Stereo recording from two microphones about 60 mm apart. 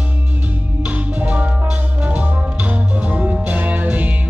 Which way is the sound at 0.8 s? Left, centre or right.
Right.